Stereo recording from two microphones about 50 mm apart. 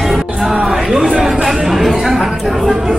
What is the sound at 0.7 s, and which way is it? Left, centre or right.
Chatter, centre.